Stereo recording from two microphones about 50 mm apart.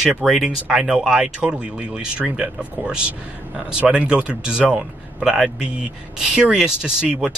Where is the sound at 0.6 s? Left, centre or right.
Centre.